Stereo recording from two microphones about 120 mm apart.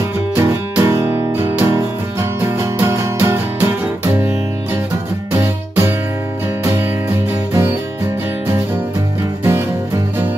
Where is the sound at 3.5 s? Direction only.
15° right (ahead or behind).